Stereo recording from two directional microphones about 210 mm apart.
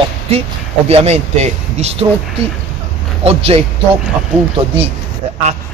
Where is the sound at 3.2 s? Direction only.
30° right (ahead or behind).